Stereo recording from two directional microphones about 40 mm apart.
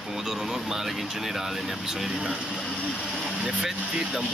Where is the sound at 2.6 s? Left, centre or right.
Left.